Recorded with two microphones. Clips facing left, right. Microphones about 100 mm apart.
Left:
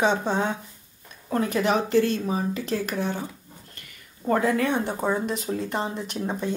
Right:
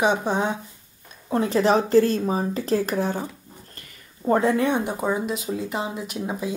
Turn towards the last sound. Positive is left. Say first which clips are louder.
# even
turn(degrees=-5)  # may be behind; listen again after turning